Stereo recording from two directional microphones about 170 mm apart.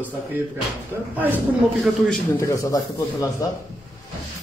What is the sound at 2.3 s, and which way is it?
Speech, 20° left (ahead or behind).